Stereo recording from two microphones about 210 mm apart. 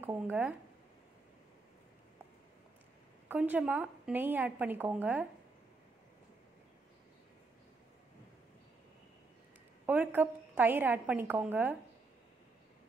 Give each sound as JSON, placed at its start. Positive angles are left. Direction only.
{"t": 0.0, "sound": "a woman's voice", "side_deg": -10}
{"t": 3.3, "sound": "a woman's voice", "side_deg": -10}
{"t": 9.8, "sound": "a woman's voice", "side_deg": -10}